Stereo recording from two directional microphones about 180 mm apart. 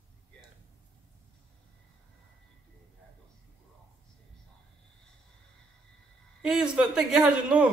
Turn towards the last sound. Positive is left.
turn(degrees=-5)  # may be behind; listen again after turning